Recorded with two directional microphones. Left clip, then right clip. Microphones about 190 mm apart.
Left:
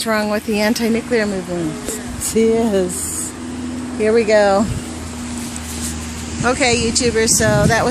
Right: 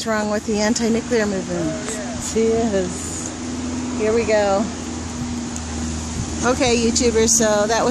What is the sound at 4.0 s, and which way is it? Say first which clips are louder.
Speech: left 5 dB; 50° left (ahead or behind).